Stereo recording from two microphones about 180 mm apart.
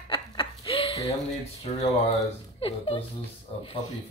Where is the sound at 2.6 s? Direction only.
30° left (ahead or behind).